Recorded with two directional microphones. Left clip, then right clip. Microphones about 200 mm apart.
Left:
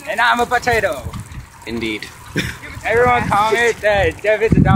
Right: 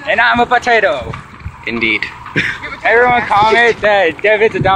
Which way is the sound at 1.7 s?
20° left (ahead or behind).